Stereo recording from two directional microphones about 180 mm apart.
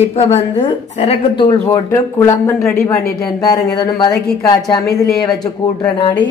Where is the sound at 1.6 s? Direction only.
15° left (ahead or behind).